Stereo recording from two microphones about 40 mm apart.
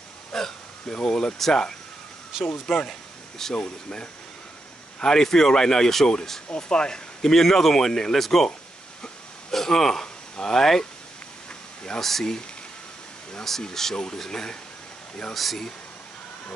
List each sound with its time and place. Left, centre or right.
0.3 s speech: centre
2.4 s speech: centre
3.5 s speech: left
5.0 s speech: centre
9.5 s speech: centre
12.0 s speech: centre
13.4 s speech: centre
15.3 s speech: centre